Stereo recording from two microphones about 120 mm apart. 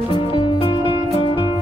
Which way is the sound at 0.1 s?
40° left (ahead or behind).